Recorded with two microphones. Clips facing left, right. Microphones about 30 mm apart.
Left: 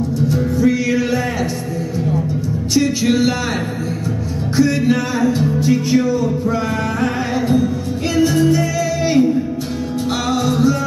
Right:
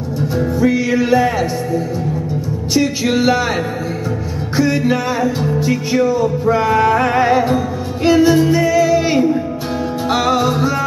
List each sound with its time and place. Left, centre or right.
0.3 s music: centre
2.7 s music: centre
4.6 s music: centre